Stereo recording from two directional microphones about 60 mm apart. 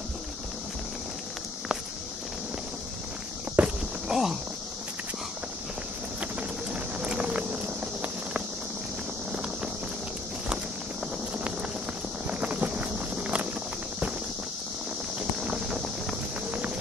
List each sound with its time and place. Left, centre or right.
3.6 s walk: right
4.1 s speech: centre
6.7 s a sound: centre
12.3 s clip-clop: right
15.1 s clip-clop: centre